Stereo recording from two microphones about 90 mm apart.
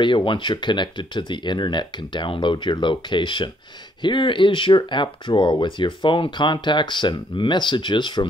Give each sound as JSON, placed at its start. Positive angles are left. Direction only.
{"t": 0.0, "sound": "speech", "side_deg": 65}